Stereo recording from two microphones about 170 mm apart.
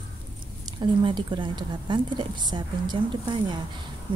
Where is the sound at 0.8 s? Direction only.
25° right (ahead or behind).